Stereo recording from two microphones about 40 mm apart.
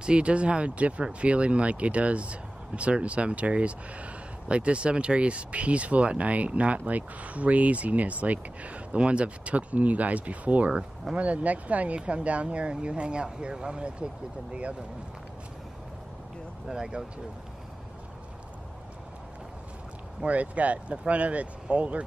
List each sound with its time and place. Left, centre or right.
0.0 s speech: right
16.6 s speech: centre
20.2 s speech: right